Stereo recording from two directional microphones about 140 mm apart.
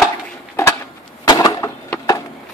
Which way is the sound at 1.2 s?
25° left (ahead or behind).